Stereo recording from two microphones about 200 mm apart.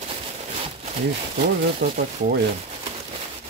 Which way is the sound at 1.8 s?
55° right (ahead or behind).